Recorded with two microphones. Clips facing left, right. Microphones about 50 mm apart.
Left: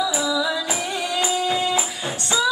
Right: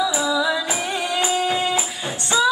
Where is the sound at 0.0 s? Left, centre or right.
Right.